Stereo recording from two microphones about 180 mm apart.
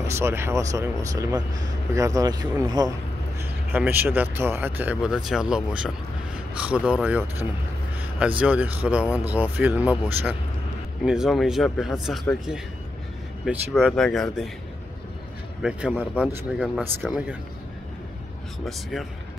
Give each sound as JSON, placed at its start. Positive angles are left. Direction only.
{"t": 0.0, "sound": "speech", "side_deg": -15}
{"t": 3.7, "sound": "speech", "side_deg": -10}
{"t": 15.6, "sound": "speech", "side_deg": -10}
{"t": 18.7, "sound": "speech", "side_deg": 0}